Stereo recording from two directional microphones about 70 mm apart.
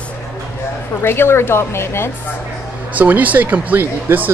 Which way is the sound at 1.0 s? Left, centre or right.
Left.